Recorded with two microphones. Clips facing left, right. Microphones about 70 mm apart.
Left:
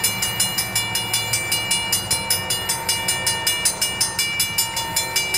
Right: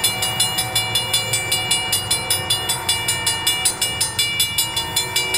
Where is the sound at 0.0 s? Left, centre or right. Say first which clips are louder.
Right 2 dB; centre.